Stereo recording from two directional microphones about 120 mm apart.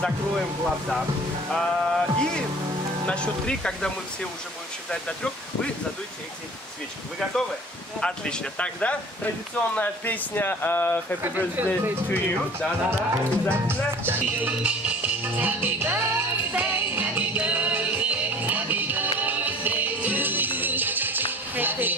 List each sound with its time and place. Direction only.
0.7 s music: 5° right (ahead or behind)
3.1 s speech: 10° left (ahead or behind)
8.0 s speech: 5° left (ahead or behind)
11.6 s speech: 20° right (ahead or behind)
12.1 s speech: 15° left (ahead or behind)
13.1 s speech: 20° right (ahead or behind)
14.2 s music: 10° right (ahead or behind)